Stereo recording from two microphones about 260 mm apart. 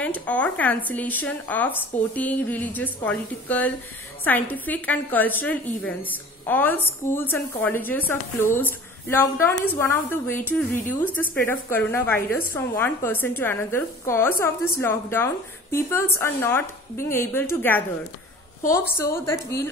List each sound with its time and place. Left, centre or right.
0.0 s a woman's voice: centre
19.1 s a woman's voice: centre